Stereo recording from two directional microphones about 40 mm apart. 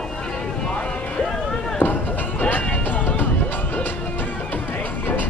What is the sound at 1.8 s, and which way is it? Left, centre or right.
Run, left.